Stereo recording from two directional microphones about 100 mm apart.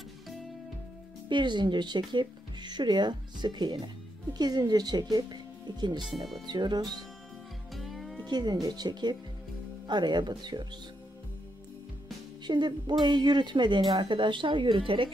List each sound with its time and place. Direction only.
0.3 s music: centre (ahead or behind)
1.3 s speech: 50° right (ahead or behind)
6.1 s speech: centre (ahead or behind)
6.4 s speech: 45° right (ahead or behind)
7.7 s music: centre (ahead or behind)
8.3 s speech: 45° right (ahead or behind)
12.4 s speech: 50° right (ahead or behind)